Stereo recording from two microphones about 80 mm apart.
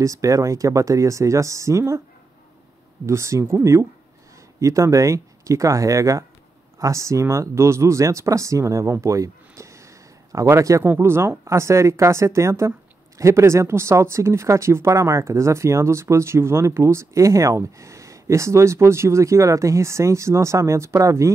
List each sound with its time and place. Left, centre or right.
0.0 s speech: right
3.1 s speech: right
9.0 s a sound: right
10.8 s speech: right